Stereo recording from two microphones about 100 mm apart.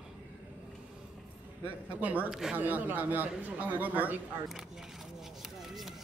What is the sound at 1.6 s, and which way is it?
Speech, 15° right (ahead or behind).